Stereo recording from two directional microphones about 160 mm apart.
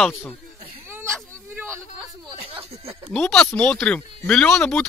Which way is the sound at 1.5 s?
15° right (ahead or behind).